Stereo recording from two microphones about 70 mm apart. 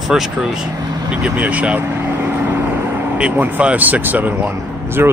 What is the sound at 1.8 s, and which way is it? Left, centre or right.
Vehicle, right.